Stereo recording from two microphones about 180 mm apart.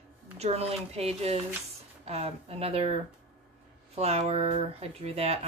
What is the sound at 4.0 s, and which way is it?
Speech, 35° right (ahead or behind).